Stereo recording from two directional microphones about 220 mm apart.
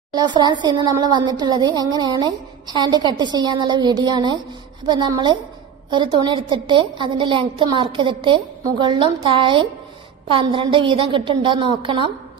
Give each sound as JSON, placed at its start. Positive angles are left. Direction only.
{"t": 0.1, "sound": "a woman's voice", "side_deg": -20}